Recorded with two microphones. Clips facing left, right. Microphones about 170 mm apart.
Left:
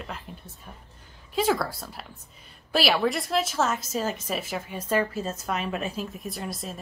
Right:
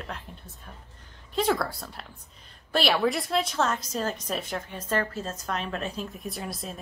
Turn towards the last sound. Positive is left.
turn(degrees=0)  # may be behind; listen again after turning